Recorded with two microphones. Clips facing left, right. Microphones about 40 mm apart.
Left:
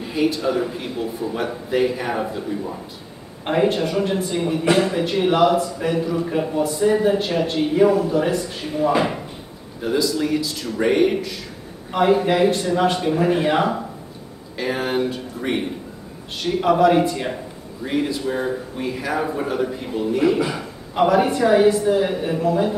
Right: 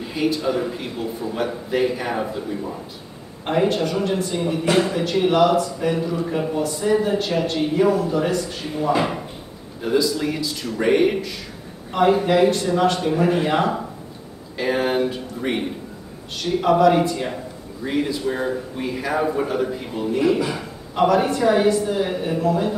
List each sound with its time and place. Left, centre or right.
0.0 s a man's voice: centre
3.6 s a man's voice: centre
11.9 s a man's voice: centre
16.7 s a man's voice: centre